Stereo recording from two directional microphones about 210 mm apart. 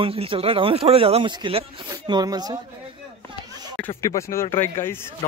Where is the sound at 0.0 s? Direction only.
25° right (ahead or behind).